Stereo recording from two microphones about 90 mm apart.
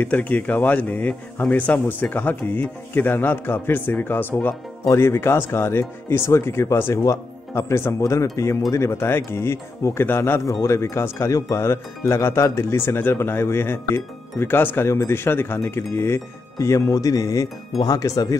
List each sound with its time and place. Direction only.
0.0 s speech: 15° left (ahead or behind); by 18.4 s 40° left (ahead or behind)